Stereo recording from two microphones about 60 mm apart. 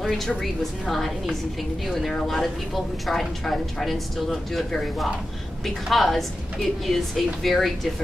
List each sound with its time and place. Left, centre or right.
0.0 s a woman's voice: centre